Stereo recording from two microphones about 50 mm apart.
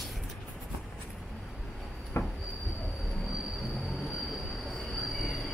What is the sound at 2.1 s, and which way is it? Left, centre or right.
Train, left.